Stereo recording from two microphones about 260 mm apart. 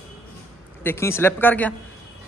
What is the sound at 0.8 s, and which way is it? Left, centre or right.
Speech, centre.